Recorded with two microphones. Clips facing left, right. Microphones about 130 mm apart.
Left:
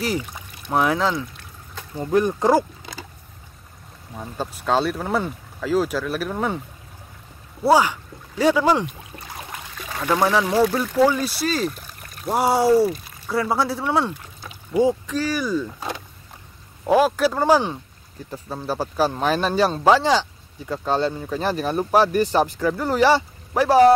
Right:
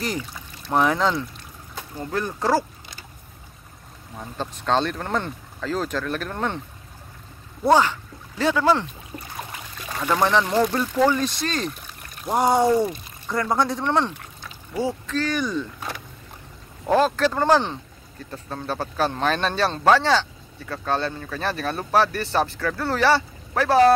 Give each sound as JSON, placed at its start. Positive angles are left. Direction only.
{"t": 0.7, "sound": "speech", "side_deg": 5}
{"t": 2.0, "sound": "speech", "side_deg": 15}
{"t": 4.1, "sound": "speech", "side_deg": 5}
{"t": 7.6, "sound": "speech", "side_deg": 10}
{"t": 9.9, "sound": "speech", "side_deg": 5}
{"t": 16.8, "sound": "speech", "side_deg": 10}